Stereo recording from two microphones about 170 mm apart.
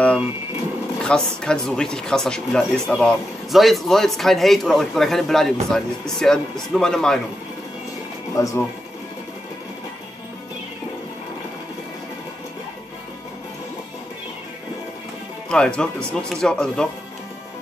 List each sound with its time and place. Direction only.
1.0 s speech: 5° left (ahead or behind)
8.4 s speech: 20° left (ahead or behind)
15.5 s speech: 5° left (ahead or behind)